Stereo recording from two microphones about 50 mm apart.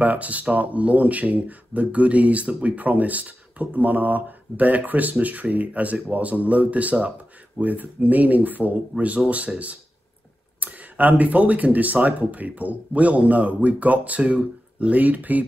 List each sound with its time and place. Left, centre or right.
0.0 s speech: right